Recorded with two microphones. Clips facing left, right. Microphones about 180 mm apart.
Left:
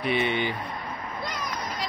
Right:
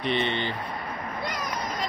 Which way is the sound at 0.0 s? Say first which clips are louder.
Left 1 dB; 10° left (ahead or behind).